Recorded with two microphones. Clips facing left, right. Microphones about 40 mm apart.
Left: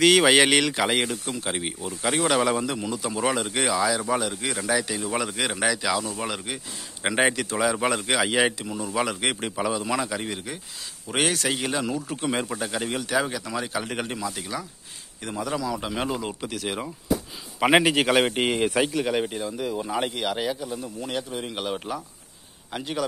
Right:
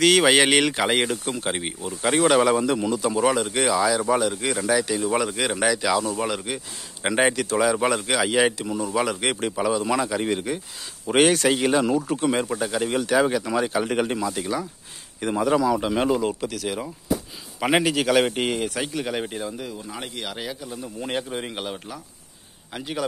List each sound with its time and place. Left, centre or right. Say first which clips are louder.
0.0 s speech: even; centre
12.2 s speech: right 4 dB; centre
15.3 s speech: right 7 dB; centre
16.5 s a man's voice: right 1 dB; left
18.9 s speech: left 2 dB; centre
21.0 s speech: right 4 dB; right
21.7 s speech: left 5 dB; centre
22.7 s speech: even; centre